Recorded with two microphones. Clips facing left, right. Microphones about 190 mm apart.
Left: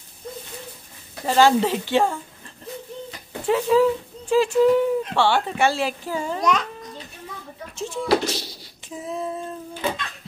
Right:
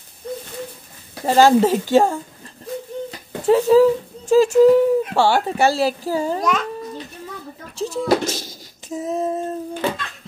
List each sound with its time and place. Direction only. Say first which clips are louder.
1.2 s speech: right 4 dB; 40° right (ahead or behind)
3.4 s speech: right 5 dB; 40° right (ahead or behind)
6.4 s a child's voice: right 1 dB; centre (ahead or behind)
7.7 s female singing: right 3 dB; 40° right (ahead or behind)